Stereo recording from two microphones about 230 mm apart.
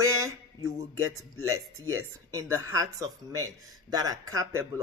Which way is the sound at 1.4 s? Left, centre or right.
Right.